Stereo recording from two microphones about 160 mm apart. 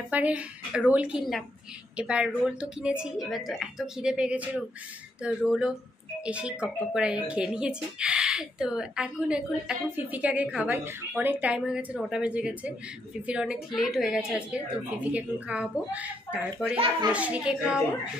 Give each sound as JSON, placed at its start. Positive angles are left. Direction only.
{"t": 0.1, "sound": "speech", "side_deg": -10}
{"t": 16.7, "sound": "a child's voice", "side_deg": -35}
{"t": 17.1, "sound": "speech", "side_deg": -10}